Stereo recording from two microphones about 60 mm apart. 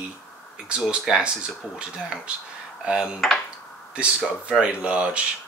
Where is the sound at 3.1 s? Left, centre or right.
Centre.